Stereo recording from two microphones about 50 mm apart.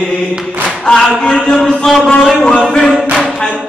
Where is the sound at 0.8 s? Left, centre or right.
Centre.